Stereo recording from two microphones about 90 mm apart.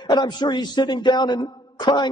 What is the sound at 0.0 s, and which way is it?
A man's voice, 55° left (ahead or behind).